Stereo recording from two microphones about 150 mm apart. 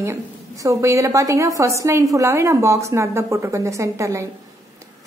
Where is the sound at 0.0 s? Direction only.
20° right (ahead or behind).